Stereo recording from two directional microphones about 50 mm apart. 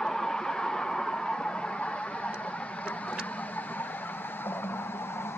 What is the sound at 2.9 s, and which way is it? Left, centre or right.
Vehicle, left.